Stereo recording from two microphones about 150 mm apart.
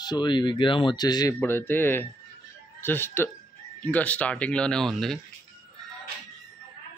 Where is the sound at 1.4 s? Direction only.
15° left (ahead or behind).